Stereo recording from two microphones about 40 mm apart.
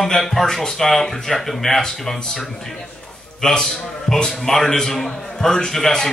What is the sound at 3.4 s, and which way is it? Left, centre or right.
A man's voice, centre.